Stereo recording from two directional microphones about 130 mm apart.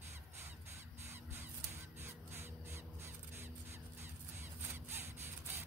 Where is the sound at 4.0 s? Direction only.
20° right (ahead or behind).